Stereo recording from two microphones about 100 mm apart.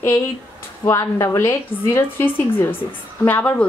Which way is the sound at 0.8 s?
30° left (ahead or behind).